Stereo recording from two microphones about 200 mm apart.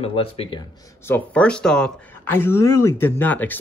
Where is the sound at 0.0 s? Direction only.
30° left (ahead or behind).